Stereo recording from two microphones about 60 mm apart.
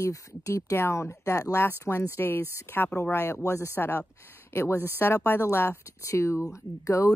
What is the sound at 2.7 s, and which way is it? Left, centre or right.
Speech, left.